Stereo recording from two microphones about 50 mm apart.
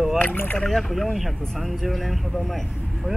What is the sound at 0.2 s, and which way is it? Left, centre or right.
Speech, left.